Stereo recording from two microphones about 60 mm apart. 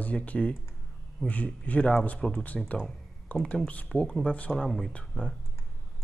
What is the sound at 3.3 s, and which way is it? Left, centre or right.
Speech, left.